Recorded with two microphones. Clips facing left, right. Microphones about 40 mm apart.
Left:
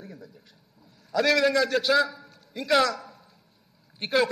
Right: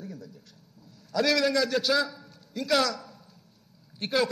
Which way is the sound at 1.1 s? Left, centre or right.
Centre.